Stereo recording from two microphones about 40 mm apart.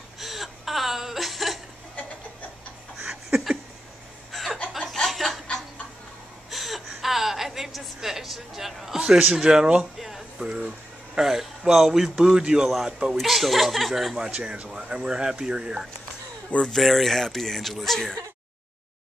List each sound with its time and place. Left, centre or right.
0.2 s whimper: centre
3.3 s a sound: centre
4.3 s chuckle: centre
5.0 s snicker: centre
6.5 s a sound: centre
12.4 s a man's voice: centre
13.2 s speech: centre
14.3 s speech: right
14.7 s a man's voice: centre
16.7 s speech: centre